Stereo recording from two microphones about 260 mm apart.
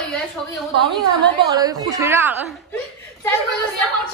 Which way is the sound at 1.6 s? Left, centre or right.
Centre.